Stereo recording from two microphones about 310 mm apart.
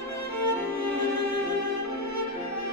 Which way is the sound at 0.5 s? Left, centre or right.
Left.